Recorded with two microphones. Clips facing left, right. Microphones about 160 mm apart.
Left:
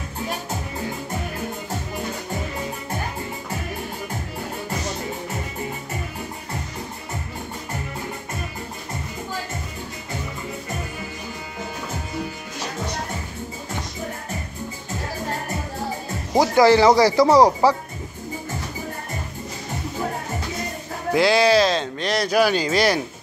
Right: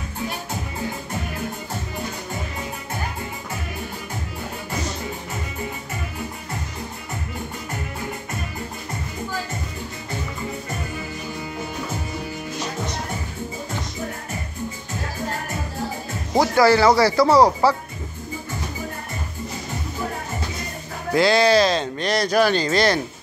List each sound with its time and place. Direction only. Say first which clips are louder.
16.3 s speech: left 1 dB; 20° left (ahead or behind)
21.1 s speech: even; 5° left (ahead or behind)